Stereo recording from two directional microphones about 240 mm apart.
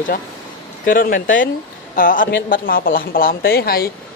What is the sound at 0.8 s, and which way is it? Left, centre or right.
Speech, left.